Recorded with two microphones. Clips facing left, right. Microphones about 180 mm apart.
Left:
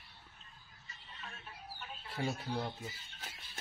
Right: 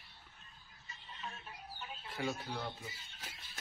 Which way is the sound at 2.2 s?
35° left (ahead or behind).